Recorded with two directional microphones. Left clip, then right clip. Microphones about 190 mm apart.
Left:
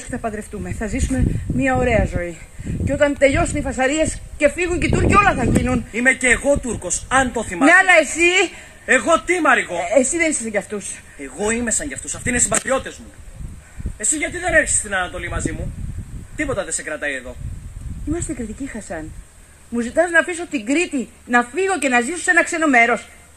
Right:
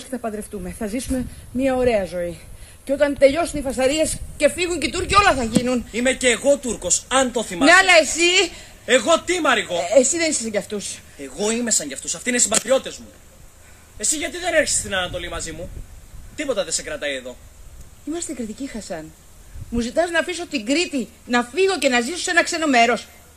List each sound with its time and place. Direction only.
0.1 s a man's voice: 40° right (ahead or behind)
6.1 s a man's voice: 35° right (ahead or behind)
9.8 s a man's voice: 35° right (ahead or behind)
13.9 s a man's voice: 45° right (ahead or behind)